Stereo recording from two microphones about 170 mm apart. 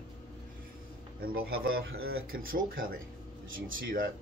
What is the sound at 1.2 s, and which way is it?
Speech, 60° right (ahead or behind).